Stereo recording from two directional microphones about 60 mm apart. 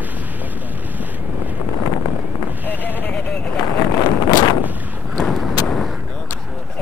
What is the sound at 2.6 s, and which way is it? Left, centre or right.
Sheep, right.